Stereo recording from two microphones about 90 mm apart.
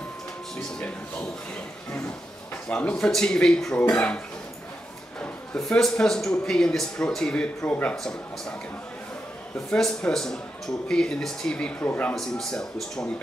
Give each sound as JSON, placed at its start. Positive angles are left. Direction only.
{"t": 0.7, "sound": "speech", "side_deg": 15}
{"t": 2.7, "sound": "speech", "side_deg": 15}
{"t": 5.7, "sound": "speech", "side_deg": 5}
{"t": 9.7, "sound": "speech", "side_deg": 5}